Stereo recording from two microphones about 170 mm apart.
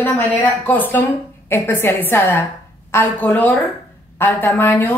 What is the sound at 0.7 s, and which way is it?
A woman's voice, 10° left (ahead or behind).